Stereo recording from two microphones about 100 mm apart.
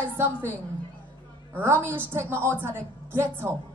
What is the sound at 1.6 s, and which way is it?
A woman's voice, 20° right (ahead or behind).